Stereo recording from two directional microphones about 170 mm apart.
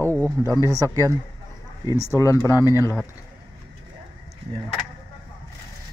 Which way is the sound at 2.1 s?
15° left (ahead or behind).